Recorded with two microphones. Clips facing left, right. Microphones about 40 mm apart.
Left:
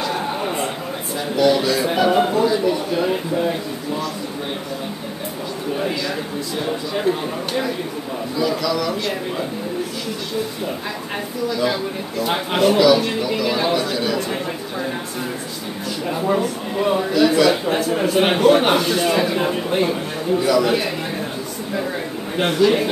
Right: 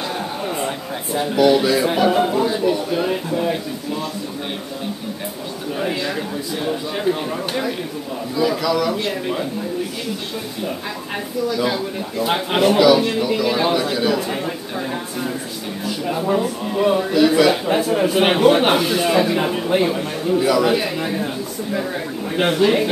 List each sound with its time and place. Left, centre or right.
1.3 s a man's voice: centre
2.3 s a man's voice: centre
6.6 s a man's voice: centre
11.4 s a man's voice: centre
16.1 s a man's voice: centre
22.6 s a man's voice: right